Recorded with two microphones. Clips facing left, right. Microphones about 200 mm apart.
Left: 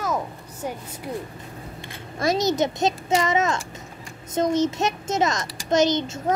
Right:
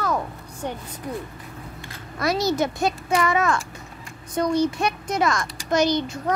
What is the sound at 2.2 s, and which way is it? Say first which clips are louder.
Speech: left 1 dB; 25° left (ahead or behind).